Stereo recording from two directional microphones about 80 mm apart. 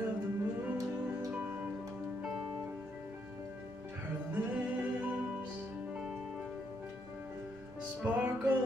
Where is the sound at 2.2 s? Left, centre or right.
Centre.